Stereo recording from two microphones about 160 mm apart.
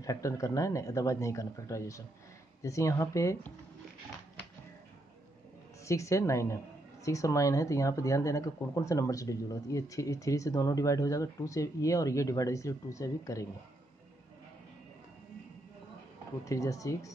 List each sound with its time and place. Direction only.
0.0 s speech: 20° left (ahead or behind)
5.9 s speech: 20° left (ahead or behind)
16.4 s speech: 20° left (ahead or behind)